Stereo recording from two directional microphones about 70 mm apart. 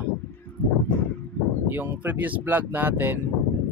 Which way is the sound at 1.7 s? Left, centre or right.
Right.